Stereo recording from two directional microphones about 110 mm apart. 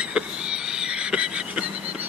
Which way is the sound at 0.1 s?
5° right (ahead or behind).